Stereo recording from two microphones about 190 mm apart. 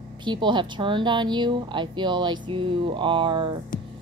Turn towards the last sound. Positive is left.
turn(degrees=-25)  # may be behind; listen again after turning